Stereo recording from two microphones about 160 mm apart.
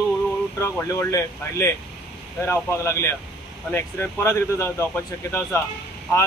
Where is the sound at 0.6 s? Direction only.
20° left (ahead or behind).